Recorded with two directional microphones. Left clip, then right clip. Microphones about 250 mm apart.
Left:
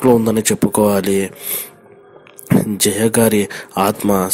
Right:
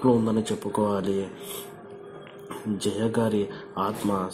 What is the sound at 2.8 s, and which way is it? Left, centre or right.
Speech, left.